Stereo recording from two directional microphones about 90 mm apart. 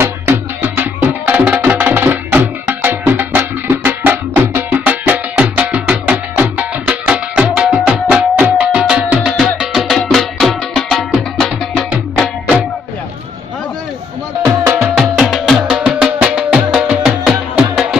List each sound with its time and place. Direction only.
0.0 s music: 25° right (ahead or behind); by 11.8 s 5° left (ahead or behind)
14.4 s music: 35° right (ahead or behind)
14.8 s music: 5° right (ahead or behind)
17.0 s music: 5° right (ahead or behind)